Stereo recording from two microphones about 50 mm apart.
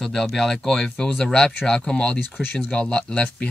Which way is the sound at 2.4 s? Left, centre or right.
Left.